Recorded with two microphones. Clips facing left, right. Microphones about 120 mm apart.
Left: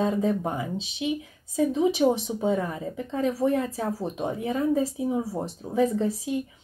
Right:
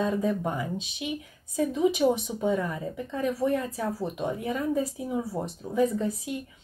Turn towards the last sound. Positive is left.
turn(degrees=25)  # may be behind; listen again after turning